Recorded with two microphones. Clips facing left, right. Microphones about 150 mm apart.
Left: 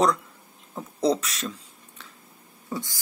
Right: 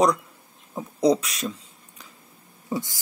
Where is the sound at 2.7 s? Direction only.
20° right (ahead or behind).